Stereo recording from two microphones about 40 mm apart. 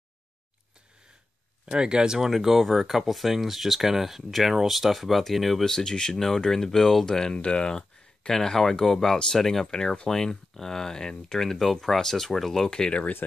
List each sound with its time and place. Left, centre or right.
1.7 s speech: right
2.1 s speech: centre
12.6 s speech: centre